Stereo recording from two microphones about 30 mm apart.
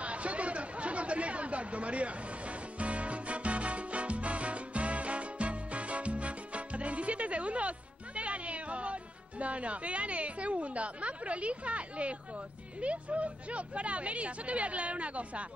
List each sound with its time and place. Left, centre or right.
0.0 s chatter: right
12.8 s speech: right